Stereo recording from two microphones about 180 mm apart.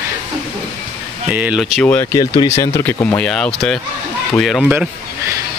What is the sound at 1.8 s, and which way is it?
Speech, 15° left (ahead or behind).